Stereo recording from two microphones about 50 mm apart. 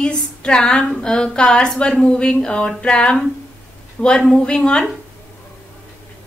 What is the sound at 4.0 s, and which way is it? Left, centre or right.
Speech, left.